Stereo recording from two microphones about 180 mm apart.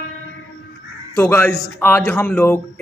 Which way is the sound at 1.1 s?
10° left (ahead or behind).